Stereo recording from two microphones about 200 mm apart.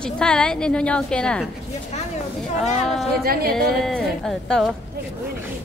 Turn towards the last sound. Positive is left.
turn(degrees=0)  # may be behind; listen again after turning